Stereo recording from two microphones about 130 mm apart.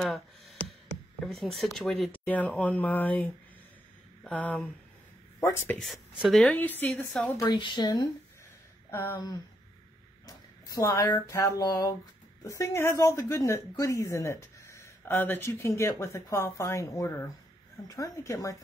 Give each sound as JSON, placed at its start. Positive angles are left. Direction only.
{"t": 0.0, "sound": "a sound", "side_deg": 0}
{"t": 1.2, "sound": "speech", "side_deg": 0}
{"t": 2.1, "sound": "a woman's voice", "side_deg": 10}
{"t": 5.8, "sound": "speech", "side_deg": 0}
{"t": 6.5, "sound": "speech", "side_deg": 15}
{"t": 7.4, "sound": "a woman's voice", "side_deg": 35}